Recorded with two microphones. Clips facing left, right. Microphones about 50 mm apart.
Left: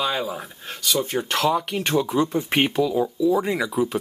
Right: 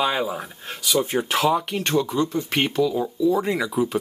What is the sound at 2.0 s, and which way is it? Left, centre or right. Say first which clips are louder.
Speech: left 1 dB; centre.